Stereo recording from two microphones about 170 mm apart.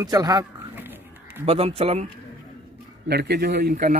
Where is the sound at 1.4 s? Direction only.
35° right (ahead or behind).